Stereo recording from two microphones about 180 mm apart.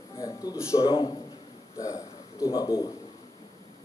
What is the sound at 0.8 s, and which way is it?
Speech, 30° left (ahead or behind).